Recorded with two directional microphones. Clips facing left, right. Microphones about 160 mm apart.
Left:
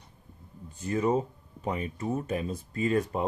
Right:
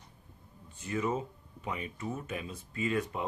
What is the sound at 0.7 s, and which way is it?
Speech, 40° left (ahead or behind).